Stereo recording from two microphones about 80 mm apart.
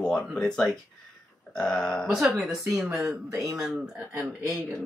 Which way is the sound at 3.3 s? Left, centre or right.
Right.